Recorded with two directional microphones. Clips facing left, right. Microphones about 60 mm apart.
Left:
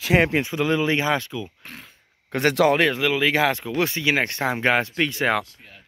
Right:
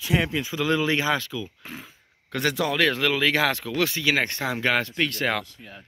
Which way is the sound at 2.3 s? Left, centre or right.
Left.